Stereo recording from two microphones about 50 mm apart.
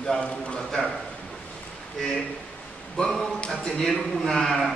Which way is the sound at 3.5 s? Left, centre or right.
Centre.